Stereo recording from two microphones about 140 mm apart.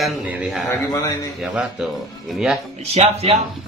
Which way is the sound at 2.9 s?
45° right (ahead or behind).